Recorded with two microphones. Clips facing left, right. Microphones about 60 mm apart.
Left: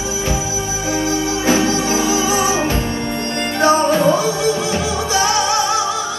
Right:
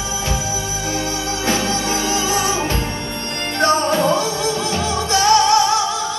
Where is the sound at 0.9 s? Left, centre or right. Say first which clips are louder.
Left 6 dB; centre.